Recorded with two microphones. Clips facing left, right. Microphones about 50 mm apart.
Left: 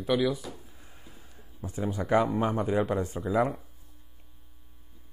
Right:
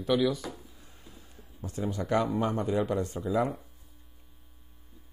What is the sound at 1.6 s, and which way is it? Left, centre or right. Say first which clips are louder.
A man's voice: left 1 dB; centre.